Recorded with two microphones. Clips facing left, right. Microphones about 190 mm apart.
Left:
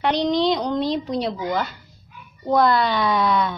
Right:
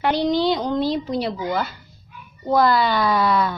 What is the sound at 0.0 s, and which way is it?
Speech, 5° right (ahead or behind).